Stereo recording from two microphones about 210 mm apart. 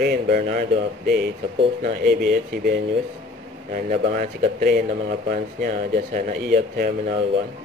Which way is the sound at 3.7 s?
40° right (ahead or behind).